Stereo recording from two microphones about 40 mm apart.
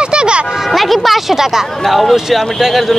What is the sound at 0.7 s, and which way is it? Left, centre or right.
A man's voice, centre.